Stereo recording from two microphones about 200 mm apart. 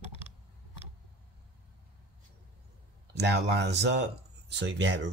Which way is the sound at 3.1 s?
55° right (ahead or behind).